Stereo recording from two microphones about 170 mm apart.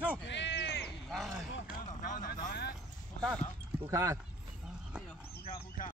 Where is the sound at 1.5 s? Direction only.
55° left (ahead or behind).